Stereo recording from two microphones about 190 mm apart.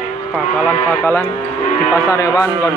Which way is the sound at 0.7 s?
10° left (ahead or behind).